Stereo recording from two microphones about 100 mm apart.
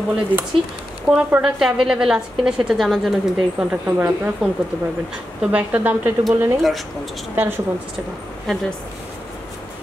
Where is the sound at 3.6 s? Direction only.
15° right (ahead or behind).